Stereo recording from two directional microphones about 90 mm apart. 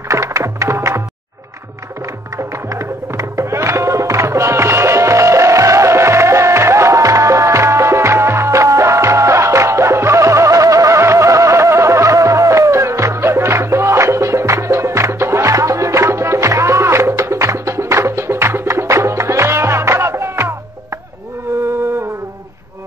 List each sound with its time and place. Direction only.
0.1 s music: 35° right (ahead or behind)
2.3 s music: 35° right (ahead or behind)